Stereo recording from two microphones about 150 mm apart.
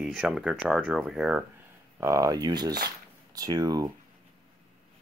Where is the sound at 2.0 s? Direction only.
20° right (ahead or behind).